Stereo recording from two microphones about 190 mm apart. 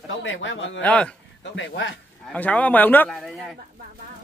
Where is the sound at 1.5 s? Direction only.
70° left (ahead or behind).